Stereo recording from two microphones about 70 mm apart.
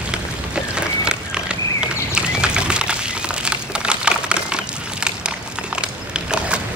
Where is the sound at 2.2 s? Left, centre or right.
Centre.